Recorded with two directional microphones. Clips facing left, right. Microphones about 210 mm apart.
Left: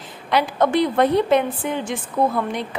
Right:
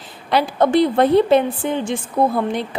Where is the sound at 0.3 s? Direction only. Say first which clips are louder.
Right 3 dB; 30° right (ahead or behind).